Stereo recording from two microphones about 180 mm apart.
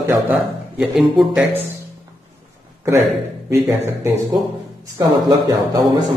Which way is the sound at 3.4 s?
15° right (ahead or behind).